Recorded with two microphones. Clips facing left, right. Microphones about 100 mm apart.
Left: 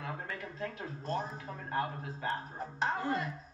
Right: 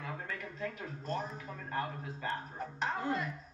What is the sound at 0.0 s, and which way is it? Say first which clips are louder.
Speech: left 1 dB; 30° left (ahead or behind).